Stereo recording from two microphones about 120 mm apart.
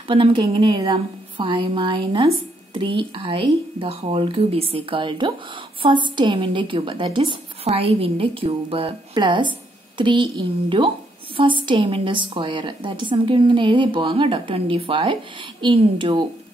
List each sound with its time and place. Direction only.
0.1 s a woman's voice: 45° right (ahead or behind)
7.6 s a woman's voice: 55° right (ahead or behind)